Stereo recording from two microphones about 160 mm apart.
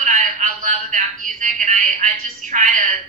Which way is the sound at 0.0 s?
50° right (ahead or behind).